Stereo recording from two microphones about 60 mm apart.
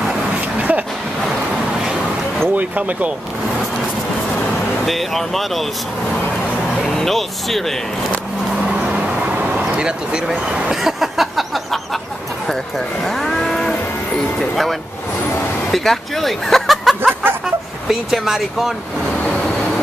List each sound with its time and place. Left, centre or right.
0.6 s a sound: right
2.5 s speech: right
4.8 s speech: centre
6.9 s speech: centre
8.6 s vehicle: right
10.8 s a sound: centre
12.4 s moo: centre
15.7 s speech: centre